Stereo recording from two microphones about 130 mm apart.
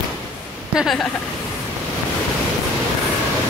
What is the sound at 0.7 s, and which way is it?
Speech, centre (ahead or behind).